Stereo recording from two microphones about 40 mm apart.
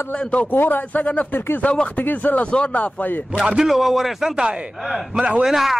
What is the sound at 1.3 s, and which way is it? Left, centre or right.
Speech, left.